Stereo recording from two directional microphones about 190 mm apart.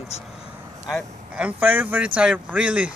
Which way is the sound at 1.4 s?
10° right (ahead or behind).